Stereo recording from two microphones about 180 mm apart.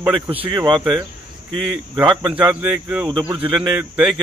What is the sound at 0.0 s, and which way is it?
Speech, 10° right (ahead or behind).